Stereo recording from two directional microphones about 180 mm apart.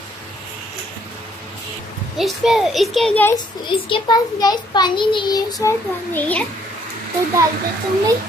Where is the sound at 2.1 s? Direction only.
Centre (ahead or behind).